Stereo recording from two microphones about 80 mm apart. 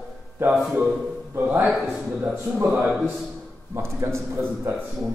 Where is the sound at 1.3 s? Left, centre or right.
Right.